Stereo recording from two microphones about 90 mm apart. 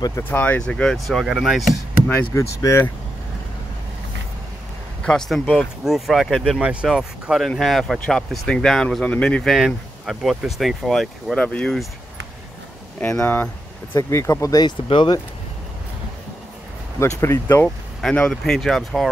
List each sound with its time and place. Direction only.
0.2 s speech: 20° left (ahead or behind); by 1.8 s centre (ahead or behind)
2.3 s speech: 30° left (ahead or behind)
5.0 s speech: 5° left (ahead or behind)
6.6 s speech: 15° right (ahead or behind); by 11.9 s 5° left (ahead or behind)
13.0 s speech: 30° left (ahead or behind)
17.0 s speech: 30° left (ahead or behind)
18.1 s speech: 5° left (ahead or behind)